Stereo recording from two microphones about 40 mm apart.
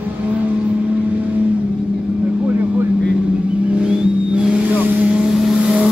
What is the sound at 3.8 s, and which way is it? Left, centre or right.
Vehicle, right.